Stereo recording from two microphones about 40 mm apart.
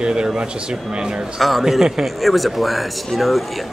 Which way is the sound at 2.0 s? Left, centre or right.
Centre.